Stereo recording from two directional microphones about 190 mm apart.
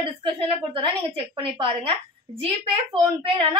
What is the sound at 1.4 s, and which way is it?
A woman's voice, 30° right (ahead or behind).